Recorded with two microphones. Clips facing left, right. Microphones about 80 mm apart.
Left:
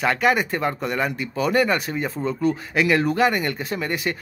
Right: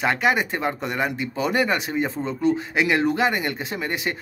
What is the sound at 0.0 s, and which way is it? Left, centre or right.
Speech, right.